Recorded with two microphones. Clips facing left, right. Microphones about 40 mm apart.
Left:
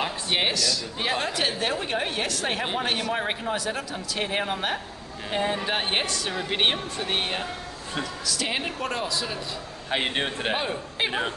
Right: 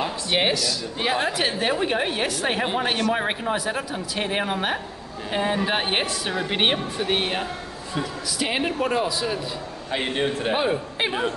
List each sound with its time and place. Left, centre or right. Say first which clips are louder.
0.3 s a woman's voice: right 3 dB; centre
9.8 s a man's voice: right 2 dB; left
10.5 s a woman's voice: right 5 dB; centre